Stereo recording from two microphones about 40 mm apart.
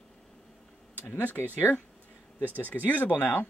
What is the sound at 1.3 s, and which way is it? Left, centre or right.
Speech, left.